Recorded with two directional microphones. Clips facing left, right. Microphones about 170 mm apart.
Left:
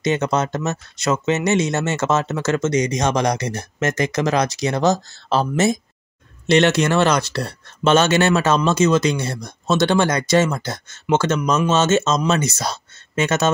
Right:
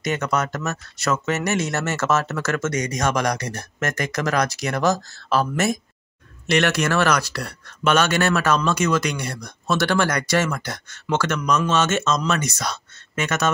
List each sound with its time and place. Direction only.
0.0 s speech: 25° left (ahead or behind)